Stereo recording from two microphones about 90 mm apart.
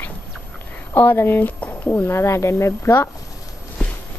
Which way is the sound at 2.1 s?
30° left (ahead or behind).